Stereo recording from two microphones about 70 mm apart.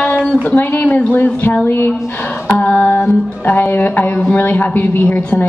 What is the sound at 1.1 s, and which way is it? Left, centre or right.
Speech, left.